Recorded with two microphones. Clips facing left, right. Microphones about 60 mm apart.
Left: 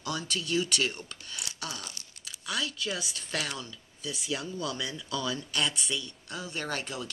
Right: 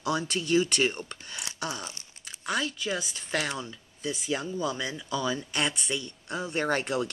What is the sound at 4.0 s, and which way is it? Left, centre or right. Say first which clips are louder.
Speech: right 4 dB; right.